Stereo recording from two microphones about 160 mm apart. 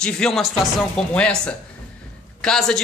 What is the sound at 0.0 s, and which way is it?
A woman's voice, centre (ahead or behind).